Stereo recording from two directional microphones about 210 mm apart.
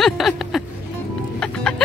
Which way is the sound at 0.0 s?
Centre (ahead or behind).